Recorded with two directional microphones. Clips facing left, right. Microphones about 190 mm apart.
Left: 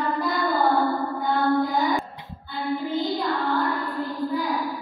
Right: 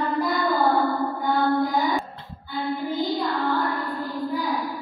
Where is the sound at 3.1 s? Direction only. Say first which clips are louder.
Even; centre (ahead or behind).